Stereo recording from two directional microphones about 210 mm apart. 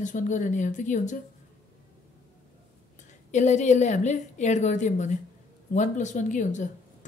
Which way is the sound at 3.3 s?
35° left (ahead or behind).